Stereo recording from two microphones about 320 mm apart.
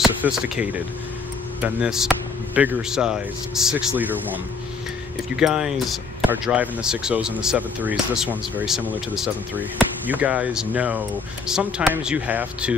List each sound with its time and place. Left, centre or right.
0.0 s speech: centre
5.4 s speech: centre